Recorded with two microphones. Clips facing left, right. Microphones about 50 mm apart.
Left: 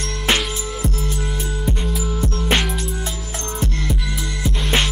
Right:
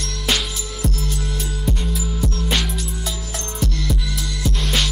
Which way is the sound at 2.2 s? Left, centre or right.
Left.